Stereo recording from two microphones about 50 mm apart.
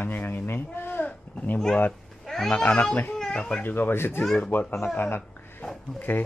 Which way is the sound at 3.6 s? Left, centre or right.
Left.